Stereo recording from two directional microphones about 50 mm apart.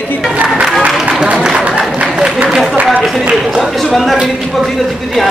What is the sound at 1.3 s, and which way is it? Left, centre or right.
Speech, centre.